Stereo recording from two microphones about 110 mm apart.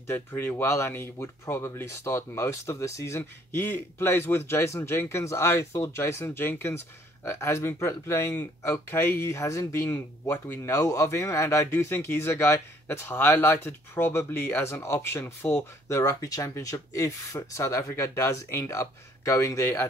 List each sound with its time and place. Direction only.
0.0 s speech: 20° left (ahead or behind)